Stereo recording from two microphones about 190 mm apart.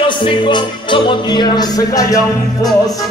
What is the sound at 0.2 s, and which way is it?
Music, 25° left (ahead or behind).